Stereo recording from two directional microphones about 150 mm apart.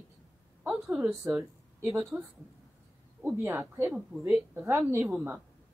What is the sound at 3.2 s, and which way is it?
A woman's voice, 20° right (ahead or behind).